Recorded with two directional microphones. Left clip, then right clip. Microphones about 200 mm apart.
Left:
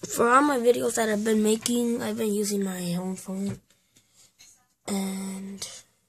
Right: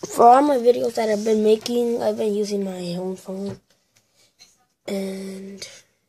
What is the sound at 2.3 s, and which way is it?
Speech, 25° left (ahead or behind).